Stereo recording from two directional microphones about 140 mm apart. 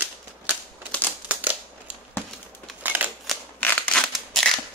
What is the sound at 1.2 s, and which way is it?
Crumpling, 10° right (ahead or behind).